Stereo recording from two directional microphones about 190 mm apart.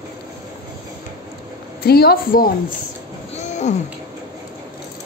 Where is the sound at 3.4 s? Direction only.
35° left (ahead or behind).